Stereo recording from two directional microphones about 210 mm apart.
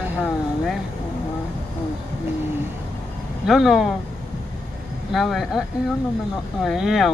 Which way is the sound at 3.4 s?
Centre (ahead or behind).